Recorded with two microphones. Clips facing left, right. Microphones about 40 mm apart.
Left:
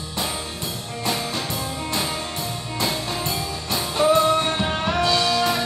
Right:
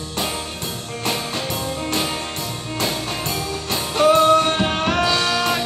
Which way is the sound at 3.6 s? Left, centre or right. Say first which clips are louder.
Right 3 dB; right.